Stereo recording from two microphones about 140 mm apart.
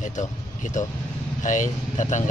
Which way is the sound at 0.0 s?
60° left (ahead or behind).